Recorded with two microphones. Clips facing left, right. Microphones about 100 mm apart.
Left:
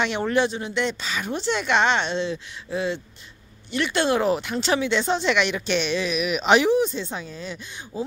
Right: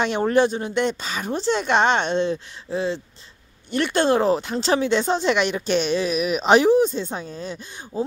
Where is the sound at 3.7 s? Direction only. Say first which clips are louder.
Right 3 dB; 45° right (ahead or behind).